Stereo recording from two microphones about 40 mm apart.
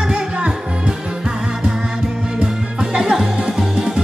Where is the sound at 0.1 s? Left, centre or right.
Right.